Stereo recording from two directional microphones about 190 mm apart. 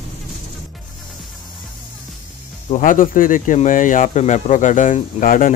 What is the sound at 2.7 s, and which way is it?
Speech, 45° left (ahead or behind).